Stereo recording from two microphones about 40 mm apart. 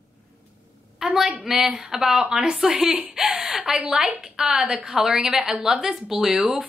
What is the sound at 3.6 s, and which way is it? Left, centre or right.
A woman's voice, centre.